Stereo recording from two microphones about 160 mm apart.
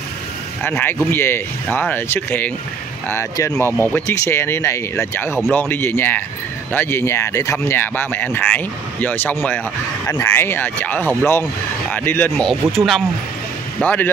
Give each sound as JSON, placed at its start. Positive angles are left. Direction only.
{"t": 0.7, "sound": "speech", "side_deg": 10}
{"t": 12.4, "sound": "speech", "side_deg": 0}
{"t": 13.7, "sound": "speech", "side_deg": 10}